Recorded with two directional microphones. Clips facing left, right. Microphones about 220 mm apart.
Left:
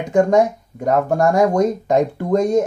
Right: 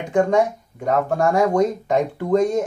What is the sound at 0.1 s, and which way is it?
Speech, 40° left (ahead or behind).